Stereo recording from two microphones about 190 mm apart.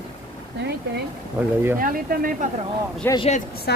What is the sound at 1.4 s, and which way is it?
Speech, 10° right (ahead or behind).